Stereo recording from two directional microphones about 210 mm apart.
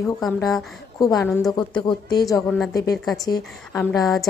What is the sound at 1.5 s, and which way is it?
Speech, 20° left (ahead or behind).